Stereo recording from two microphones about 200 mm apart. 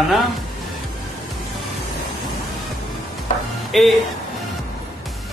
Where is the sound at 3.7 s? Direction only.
Centre (ahead or behind).